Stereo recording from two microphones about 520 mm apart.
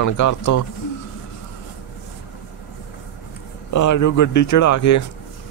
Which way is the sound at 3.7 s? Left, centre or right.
Left.